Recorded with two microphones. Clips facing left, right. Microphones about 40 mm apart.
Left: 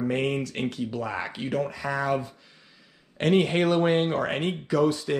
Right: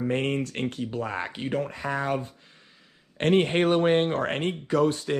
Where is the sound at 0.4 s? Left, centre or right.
Right.